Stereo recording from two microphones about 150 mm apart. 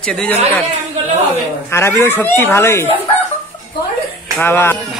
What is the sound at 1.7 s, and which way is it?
Speech, 15° left (ahead or behind).